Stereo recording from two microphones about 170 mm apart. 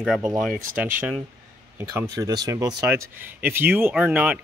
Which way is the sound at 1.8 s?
15° right (ahead or behind).